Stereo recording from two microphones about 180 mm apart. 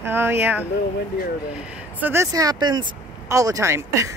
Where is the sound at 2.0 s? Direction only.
15° right (ahead or behind).